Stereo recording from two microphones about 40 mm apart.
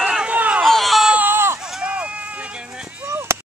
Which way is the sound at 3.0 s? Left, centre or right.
Right.